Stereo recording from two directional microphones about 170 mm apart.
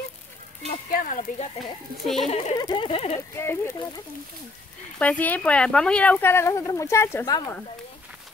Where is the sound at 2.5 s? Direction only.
25° left (ahead or behind).